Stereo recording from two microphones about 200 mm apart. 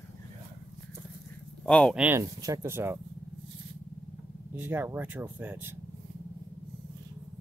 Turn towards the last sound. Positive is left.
turn(degrees=-10)  # may be behind; listen again after turning